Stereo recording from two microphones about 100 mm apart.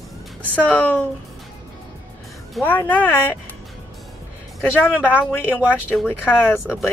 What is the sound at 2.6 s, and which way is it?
Speech, 20° left (ahead or behind).